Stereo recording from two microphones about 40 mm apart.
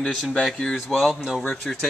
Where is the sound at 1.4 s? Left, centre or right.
Left.